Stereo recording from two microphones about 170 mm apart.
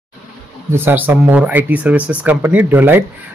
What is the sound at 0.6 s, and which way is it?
A man's voice, 15° right (ahead or behind).